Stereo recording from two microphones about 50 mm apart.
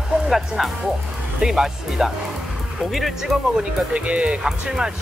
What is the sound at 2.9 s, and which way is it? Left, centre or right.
Speech, centre.